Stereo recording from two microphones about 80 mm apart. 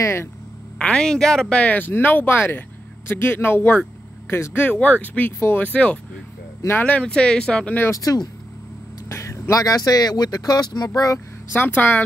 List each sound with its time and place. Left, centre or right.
0.0 s speech: left
0.7 s speech: centre
7.9 s speech: left
9.1 s speech: left
11.5 s speech: left